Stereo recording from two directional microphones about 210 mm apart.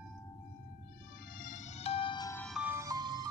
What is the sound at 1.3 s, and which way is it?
Music, 40° left (ahead or behind).